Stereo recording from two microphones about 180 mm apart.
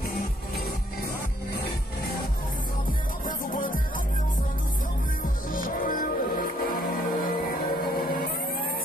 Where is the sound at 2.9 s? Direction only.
50° left (ahead or behind).